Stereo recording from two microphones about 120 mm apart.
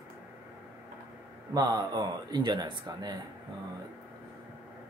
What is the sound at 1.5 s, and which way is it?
Speech, 35° right (ahead or behind).